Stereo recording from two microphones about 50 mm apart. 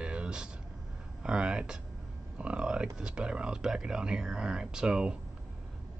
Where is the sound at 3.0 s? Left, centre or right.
Centre.